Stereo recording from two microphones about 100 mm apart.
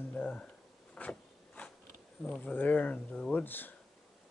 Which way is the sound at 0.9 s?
10° left (ahead or behind).